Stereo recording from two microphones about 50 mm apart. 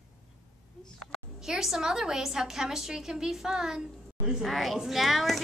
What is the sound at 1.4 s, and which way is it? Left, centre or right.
A woman's voice, centre.